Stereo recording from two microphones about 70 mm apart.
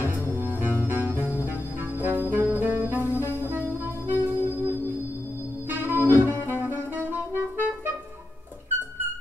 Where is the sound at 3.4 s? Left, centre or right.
Right.